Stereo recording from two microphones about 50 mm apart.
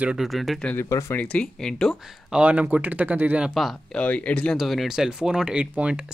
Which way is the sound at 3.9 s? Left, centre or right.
Left.